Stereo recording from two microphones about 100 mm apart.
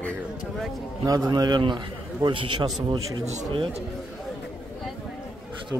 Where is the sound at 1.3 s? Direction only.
45° right (ahead or behind).